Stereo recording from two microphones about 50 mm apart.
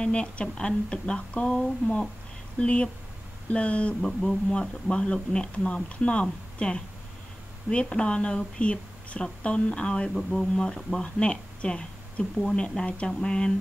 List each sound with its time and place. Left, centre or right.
0.0 s speech: left